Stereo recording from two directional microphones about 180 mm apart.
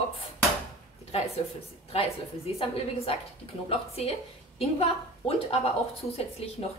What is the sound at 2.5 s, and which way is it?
A woman's voice, 35° left (ahead or behind).